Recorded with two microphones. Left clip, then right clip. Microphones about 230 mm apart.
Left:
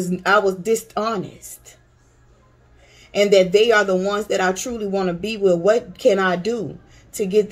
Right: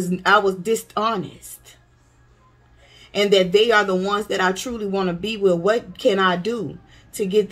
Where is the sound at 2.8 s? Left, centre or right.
Centre.